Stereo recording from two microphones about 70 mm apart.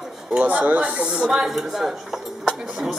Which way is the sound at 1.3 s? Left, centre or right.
Centre.